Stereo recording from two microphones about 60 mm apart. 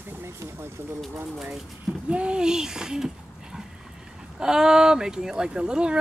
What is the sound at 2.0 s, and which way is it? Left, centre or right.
Speech, centre.